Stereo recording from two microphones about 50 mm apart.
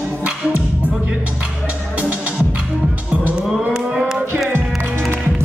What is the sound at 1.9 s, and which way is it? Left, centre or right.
Music, right.